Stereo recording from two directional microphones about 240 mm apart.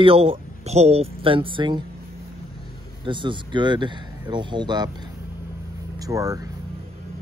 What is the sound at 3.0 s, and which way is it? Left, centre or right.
Speech, centre.